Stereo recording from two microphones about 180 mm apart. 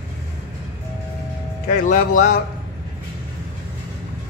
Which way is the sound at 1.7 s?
45° left (ahead or behind).